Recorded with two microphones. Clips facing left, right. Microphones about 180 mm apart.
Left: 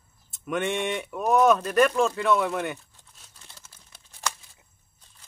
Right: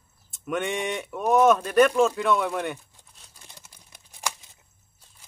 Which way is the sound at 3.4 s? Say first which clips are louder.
Right 2 dB; 15° right (ahead or behind).